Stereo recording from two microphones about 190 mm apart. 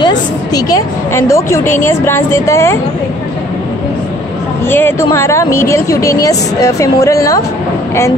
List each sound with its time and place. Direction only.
0.0 s a woman's voice: 20° left (ahead or behind)
4.6 s a woman's voice: 10° left (ahead or behind)